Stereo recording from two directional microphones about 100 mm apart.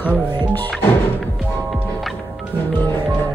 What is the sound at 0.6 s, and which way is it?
Speech, 20° left (ahead or behind).